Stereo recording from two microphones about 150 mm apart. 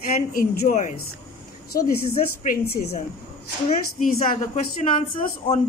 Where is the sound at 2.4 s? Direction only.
70° left (ahead or behind).